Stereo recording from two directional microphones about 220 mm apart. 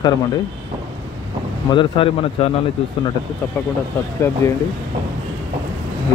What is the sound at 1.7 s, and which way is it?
Speech, 25° left (ahead or behind).